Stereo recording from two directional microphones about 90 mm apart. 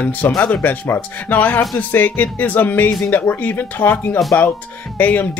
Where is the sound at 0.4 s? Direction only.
20° left (ahead or behind).